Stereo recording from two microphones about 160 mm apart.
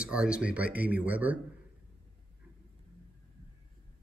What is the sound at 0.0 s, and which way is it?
Speech, 5° right (ahead or behind).